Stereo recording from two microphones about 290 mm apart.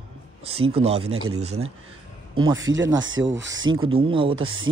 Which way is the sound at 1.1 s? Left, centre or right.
Right.